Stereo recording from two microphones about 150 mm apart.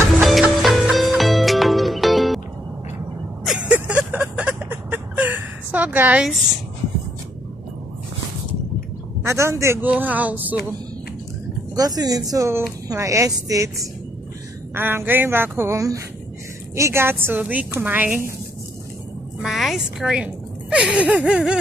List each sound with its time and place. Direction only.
0.2 s music: centre (ahead or behind)
3.4 s vehicle: 10° right (ahead or behind)
9.2 s a man's voice: 20° right (ahead or behind)
11.7 s a woman's voice: 25° right (ahead or behind)
19.4 s a woman's voice: centre (ahead or behind)